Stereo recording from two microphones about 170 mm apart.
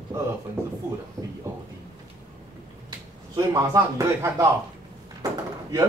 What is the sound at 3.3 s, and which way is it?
Speech, 15° right (ahead or behind).